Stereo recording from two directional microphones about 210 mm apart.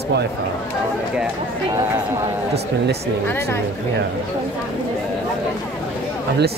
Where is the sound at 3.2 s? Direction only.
10° left (ahead or behind).